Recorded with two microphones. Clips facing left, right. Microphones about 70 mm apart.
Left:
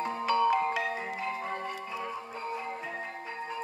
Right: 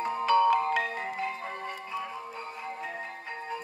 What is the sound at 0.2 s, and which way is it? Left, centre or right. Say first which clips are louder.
Marimba: right 3 dB; right.